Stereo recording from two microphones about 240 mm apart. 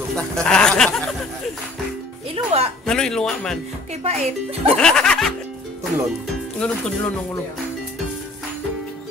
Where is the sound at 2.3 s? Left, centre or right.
Right.